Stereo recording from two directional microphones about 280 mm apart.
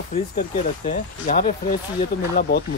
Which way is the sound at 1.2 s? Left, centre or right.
Left.